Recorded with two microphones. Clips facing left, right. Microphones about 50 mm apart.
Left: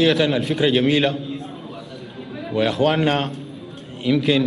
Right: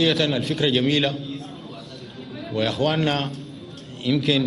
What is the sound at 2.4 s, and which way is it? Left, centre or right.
A man's voice, centre.